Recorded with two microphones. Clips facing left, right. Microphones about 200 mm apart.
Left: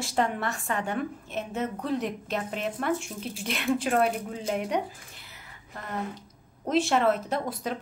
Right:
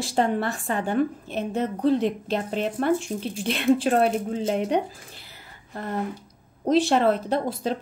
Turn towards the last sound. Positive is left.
turn(degrees=-30)  # may be behind; listen again after turning